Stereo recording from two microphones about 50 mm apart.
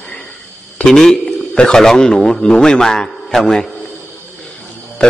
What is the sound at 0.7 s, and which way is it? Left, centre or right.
Speech, centre.